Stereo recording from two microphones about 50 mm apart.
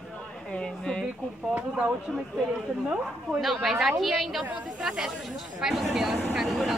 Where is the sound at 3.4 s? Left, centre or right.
Centre.